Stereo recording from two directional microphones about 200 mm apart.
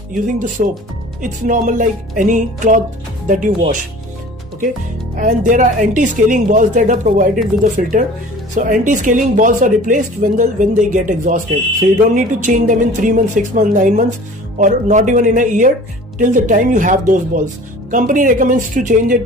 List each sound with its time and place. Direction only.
0.1 s speech: 40° right (ahead or behind)
5.1 s speech: 40° right (ahead or behind)